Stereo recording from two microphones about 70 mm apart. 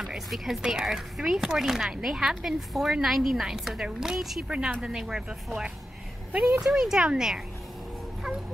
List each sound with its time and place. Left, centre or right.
0.0 s speech: centre
4.5 s speech: centre
6.3 s speech: right
6.7 s speech: centre